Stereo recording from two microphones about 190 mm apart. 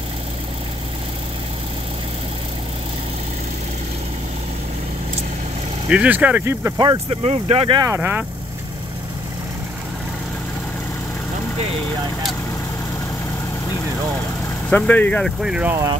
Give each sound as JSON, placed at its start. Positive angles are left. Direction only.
{"t": 5.9, "sound": "speech", "side_deg": -5}
{"t": 7.9, "sound": "speech", "side_deg": -10}
{"t": 14.7, "sound": "speech", "side_deg": 10}